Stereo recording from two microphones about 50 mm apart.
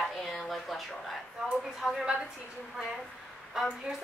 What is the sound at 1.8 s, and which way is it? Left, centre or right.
Speech, centre.